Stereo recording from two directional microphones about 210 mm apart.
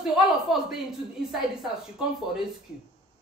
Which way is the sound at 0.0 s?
Centre (ahead or behind).